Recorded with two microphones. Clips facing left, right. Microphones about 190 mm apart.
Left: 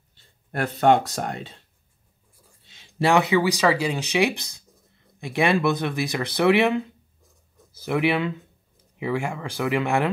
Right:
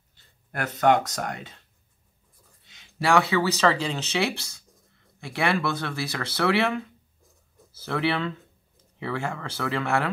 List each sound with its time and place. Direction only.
0.1 s speech: 30° left (ahead or behind)
2.6 s speech: 25° left (ahead or behind)